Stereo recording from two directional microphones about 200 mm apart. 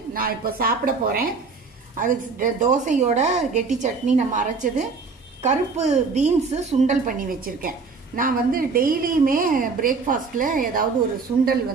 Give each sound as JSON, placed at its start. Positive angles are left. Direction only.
{"t": 0.1, "sound": "a woman's voice", "side_deg": -45}